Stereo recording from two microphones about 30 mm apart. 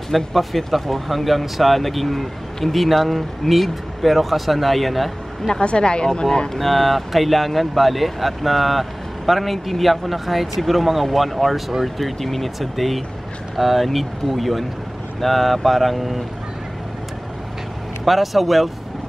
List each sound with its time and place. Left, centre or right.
0.1 s speech: centre
5.5 s speech: left
6.5 s speech: centre
18.0 s speech: centre